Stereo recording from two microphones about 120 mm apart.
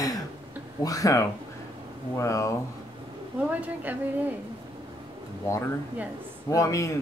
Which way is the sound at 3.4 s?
15° right (ahead or behind).